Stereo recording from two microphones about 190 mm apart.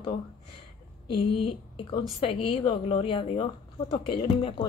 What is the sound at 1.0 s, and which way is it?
A woman's voice, 25° left (ahead or behind).